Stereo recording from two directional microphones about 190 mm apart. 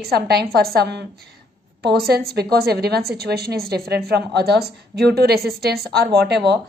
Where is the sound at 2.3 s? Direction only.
55° right (ahead or behind).